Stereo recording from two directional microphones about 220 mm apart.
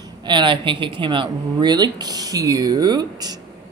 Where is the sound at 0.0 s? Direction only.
20° right (ahead or behind).